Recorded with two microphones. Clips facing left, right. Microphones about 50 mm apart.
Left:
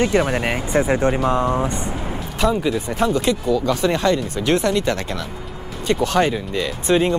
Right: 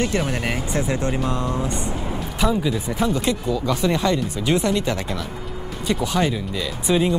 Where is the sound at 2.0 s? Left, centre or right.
Centre.